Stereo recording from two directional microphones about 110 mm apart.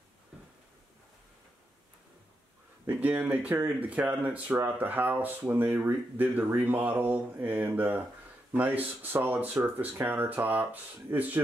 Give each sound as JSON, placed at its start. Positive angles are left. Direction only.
{"t": 2.9, "sound": "speech", "side_deg": -15}